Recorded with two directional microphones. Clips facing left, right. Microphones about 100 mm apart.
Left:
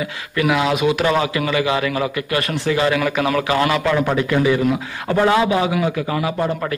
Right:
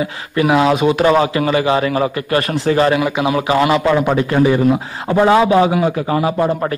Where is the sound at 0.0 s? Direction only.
30° right (ahead or behind).